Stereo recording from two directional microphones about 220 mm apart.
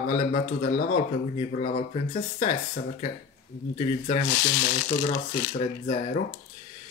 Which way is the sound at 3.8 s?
30° left (ahead or behind).